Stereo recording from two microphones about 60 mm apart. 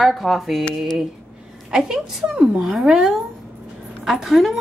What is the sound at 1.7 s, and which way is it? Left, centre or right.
A woman's voice, centre.